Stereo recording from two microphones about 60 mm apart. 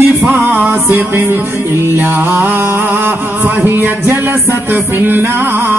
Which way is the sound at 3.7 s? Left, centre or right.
Right.